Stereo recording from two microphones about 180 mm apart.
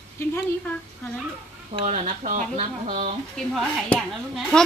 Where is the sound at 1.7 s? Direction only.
35° right (ahead or behind).